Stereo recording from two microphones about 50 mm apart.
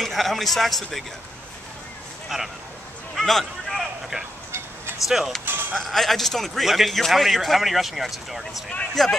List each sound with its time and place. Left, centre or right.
0.0 s speech: centre
2.2 s speech: centre
3.2 s a sound: centre
5.0 s speech: centre
5.4 s speech: right
5.8 s speech: centre
8.9 s speech: centre